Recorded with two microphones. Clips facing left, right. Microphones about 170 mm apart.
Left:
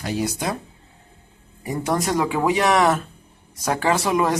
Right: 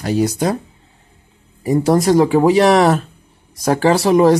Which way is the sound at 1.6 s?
30° right (ahead or behind).